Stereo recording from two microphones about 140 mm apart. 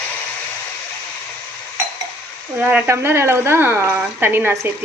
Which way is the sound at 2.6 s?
10° right (ahead or behind).